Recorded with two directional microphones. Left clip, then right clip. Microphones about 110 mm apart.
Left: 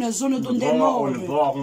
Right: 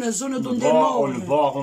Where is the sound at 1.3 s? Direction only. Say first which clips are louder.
Right 2 dB; 25° right (ahead or behind).